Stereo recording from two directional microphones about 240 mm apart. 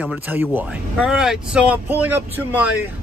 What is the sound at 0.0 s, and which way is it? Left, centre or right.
Speech, centre.